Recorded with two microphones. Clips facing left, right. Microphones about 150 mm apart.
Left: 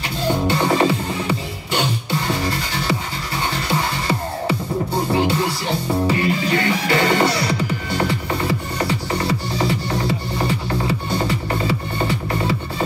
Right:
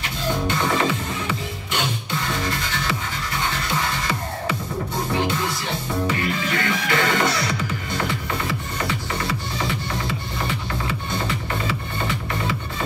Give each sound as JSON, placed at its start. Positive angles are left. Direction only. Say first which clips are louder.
{"t": 0.3, "sound": "music", "louder": "left 4 dB", "side_deg": 35}